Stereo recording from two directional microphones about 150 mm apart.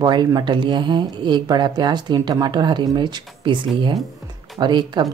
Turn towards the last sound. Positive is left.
turn(degrees=-30)  # may be behind; listen again after turning